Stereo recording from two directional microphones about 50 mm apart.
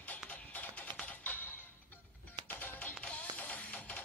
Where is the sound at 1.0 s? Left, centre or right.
Left.